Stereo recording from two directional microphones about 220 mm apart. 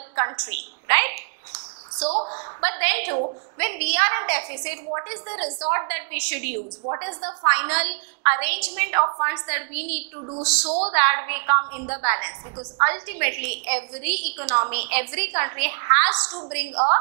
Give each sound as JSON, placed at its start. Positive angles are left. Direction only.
{"t": 0.1, "sound": "a woman's voice", "side_deg": -10}
{"t": 2.0, "sound": "a woman's voice", "side_deg": -30}
{"t": 2.6, "sound": "a woman's voice", "side_deg": -10}
{"t": 16.2, "sound": "a woman's voice", "side_deg": -25}